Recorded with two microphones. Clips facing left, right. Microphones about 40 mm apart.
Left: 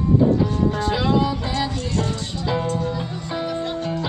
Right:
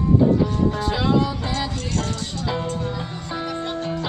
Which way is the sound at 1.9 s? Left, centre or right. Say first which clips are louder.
Left 2 dB; left.